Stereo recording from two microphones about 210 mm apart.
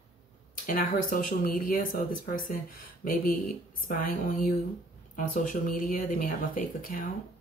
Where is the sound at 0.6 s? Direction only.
40° left (ahead or behind).